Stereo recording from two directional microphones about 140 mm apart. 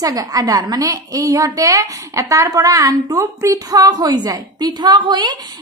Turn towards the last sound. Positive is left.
turn(degrees=-30)  # may be behind; listen again after turning